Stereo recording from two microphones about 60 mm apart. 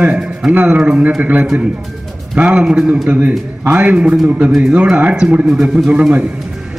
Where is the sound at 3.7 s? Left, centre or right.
Right.